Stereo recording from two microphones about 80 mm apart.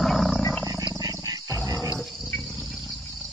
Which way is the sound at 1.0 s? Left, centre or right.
Right.